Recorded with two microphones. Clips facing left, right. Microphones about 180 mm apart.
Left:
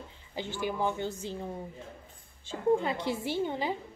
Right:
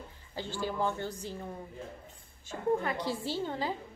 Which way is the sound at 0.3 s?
15° left (ahead or behind).